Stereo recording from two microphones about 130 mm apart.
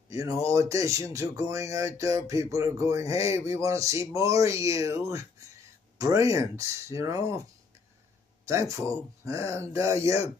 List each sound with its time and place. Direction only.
0.1 s speech: 25° right (ahead or behind)
8.5 s speech: 25° right (ahead or behind)